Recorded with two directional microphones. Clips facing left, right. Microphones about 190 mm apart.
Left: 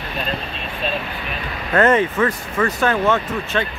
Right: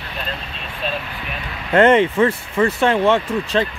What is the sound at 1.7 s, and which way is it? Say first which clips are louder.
Speech: right 3 dB; 30° right (ahead or behind).